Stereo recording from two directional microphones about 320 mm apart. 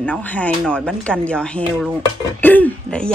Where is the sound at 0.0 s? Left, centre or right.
Centre.